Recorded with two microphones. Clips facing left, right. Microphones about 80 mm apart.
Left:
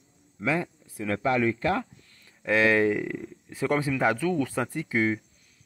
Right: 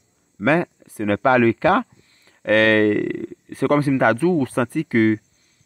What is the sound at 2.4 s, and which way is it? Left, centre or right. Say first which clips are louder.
Speech: right 6 dB; right.